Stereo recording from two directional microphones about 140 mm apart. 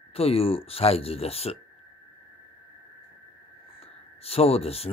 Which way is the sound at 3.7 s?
45° left (ahead or behind).